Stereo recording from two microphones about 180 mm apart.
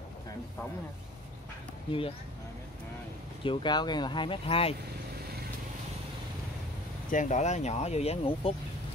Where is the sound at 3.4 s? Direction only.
25° left (ahead or behind).